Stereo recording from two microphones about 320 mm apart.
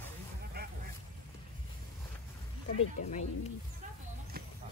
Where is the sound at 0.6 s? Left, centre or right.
Right.